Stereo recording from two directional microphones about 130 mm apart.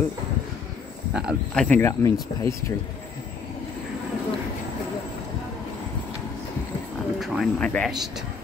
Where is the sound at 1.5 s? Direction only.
10° left (ahead or behind).